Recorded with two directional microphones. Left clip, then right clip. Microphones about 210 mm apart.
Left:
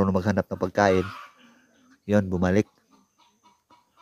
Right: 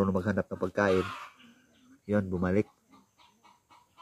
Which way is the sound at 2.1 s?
45° left (ahead or behind).